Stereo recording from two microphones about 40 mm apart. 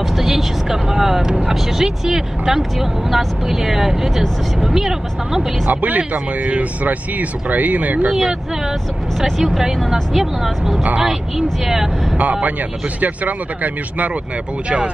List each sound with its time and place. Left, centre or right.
0.0 s speech: centre
5.7 s speech: right
6.1 s speech: right
8.1 s speech: centre
12.2 s speech: right